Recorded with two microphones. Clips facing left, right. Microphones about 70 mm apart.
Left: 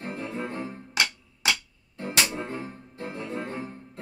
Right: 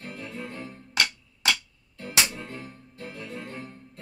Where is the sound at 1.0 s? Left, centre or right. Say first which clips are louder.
Even; centre.